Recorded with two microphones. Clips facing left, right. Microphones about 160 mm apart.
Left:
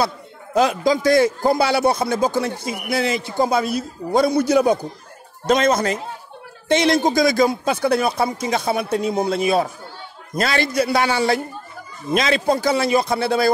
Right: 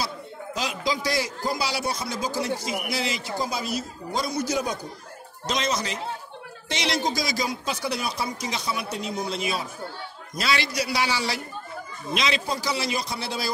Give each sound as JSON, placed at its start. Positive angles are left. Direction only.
{"t": 0.6, "sound": "a man's voice", "side_deg": 55}